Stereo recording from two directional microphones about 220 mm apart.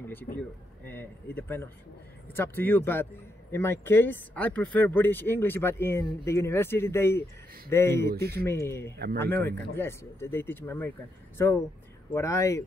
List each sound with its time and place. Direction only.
0.0 s speech: 10° left (ahead or behind)
8.9 s speech: 50° right (ahead or behind)
9.2 s speech: 10° left (ahead or behind)
12.1 s speech: 15° left (ahead or behind)